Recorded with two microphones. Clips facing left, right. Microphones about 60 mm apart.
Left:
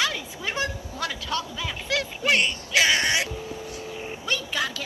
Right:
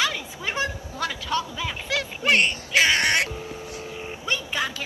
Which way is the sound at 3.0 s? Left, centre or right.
Right.